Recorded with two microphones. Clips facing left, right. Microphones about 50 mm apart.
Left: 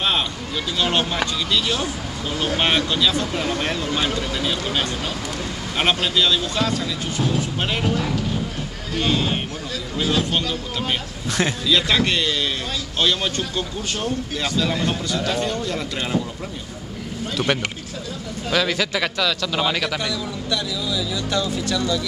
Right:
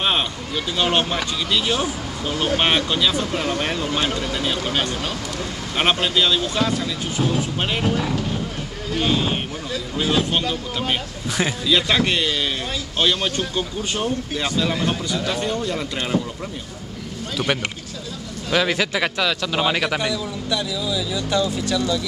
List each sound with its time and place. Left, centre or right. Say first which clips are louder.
0.7 s speech: right 1 dB; centre
17.4 s speech: left 1 dB; centre
18.5 s speech: right 1 dB; centre